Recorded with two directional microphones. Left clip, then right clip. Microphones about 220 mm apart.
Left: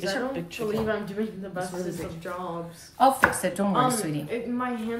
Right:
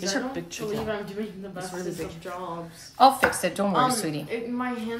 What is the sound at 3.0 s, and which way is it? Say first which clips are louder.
Speech: right 2 dB; 35° right (ahead or behind).